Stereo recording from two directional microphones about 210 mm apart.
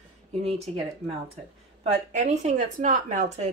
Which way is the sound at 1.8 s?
30° right (ahead or behind).